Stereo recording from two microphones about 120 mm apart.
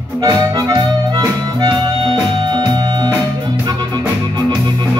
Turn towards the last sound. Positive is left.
turn(degrees=-35)  # may be behind; listen again after turning